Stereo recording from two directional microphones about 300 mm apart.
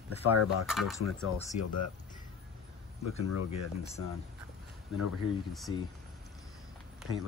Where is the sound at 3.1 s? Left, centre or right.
Left.